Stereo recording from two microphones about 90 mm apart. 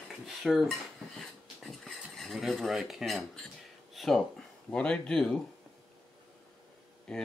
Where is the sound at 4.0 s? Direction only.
5° left (ahead or behind).